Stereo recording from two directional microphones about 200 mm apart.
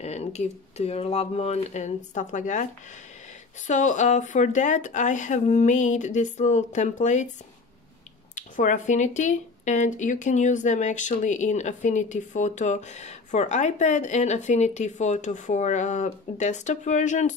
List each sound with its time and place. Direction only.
0.0 s speech: 35° left (ahead or behind)
8.4 s speech: 40° left (ahead or behind)